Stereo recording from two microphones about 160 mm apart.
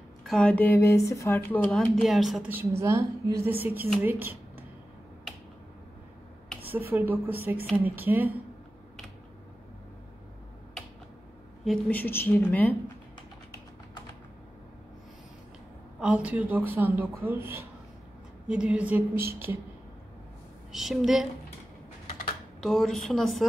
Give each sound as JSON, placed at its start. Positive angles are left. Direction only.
{"t": 0.2, "sound": "speech", "side_deg": 5}
{"t": 6.7, "sound": "speech", "side_deg": -10}
{"t": 11.9, "sound": "speech", "side_deg": 10}
{"t": 16.0, "sound": "speech", "side_deg": -5}
{"t": 20.7, "sound": "speech", "side_deg": 0}
{"t": 22.6, "sound": "speech", "side_deg": 0}